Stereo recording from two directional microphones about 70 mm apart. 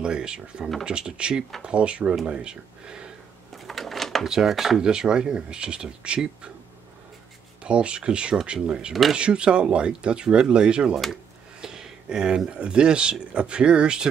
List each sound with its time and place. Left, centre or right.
0.0 s speech: centre
3.5 s speech: centre
7.6 s speech: centre